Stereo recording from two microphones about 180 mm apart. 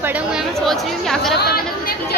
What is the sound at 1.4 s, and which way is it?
Chatter, 60° left (ahead or behind).